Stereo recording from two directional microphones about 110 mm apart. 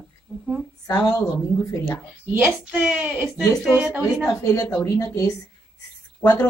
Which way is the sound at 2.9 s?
20° right (ahead or behind).